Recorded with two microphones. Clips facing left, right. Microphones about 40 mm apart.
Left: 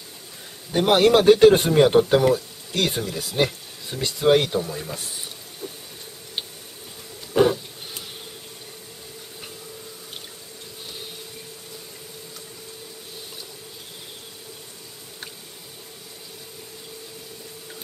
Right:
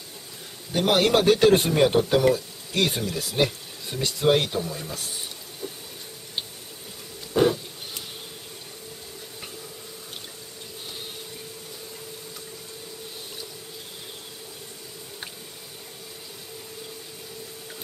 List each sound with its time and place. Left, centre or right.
0.7 s speech: centre
2.7 s speech: centre
5.6 s vehicle: centre